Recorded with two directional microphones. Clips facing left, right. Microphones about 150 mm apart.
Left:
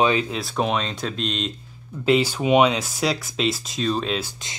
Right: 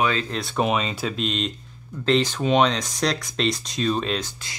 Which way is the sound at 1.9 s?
10° left (ahead or behind).